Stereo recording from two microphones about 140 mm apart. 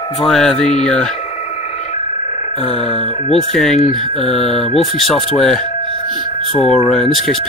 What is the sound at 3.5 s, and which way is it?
Speech, 5° left (ahead or behind).